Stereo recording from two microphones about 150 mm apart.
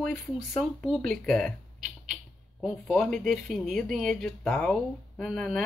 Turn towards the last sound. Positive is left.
turn(degrees=0)  # may be behind; listen again after turning